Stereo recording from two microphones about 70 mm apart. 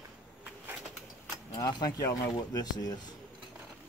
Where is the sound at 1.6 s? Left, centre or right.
Left.